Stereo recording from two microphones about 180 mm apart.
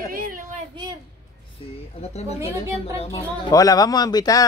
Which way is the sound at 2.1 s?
35° left (ahead or behind).